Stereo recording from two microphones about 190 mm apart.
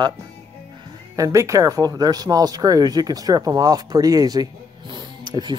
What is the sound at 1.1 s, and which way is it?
Speech, 15° right (ahead or behind).